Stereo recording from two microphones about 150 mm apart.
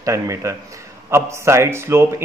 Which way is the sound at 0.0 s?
20° right (ahead or behind).